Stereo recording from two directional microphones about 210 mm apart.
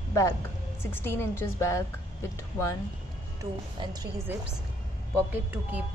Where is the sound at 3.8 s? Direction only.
20° right (ahead or behind).